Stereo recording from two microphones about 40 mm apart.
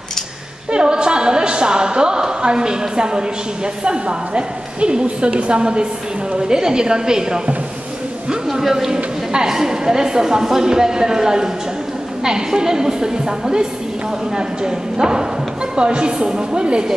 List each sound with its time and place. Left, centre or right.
0.7 s a woman's voice: right
8.5 s a man's voice: centre